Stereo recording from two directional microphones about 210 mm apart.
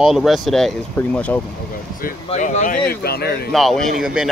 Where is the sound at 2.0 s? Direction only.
35° left (ahead or behind).